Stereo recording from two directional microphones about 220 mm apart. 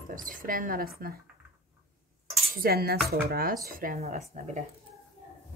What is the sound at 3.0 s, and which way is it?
Speech, 40° right (ahead or behind).